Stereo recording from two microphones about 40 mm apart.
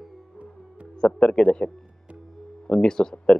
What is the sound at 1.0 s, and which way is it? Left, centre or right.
Speech, left.